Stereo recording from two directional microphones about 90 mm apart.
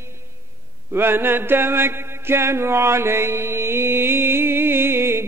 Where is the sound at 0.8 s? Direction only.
25° right (ahead or behind).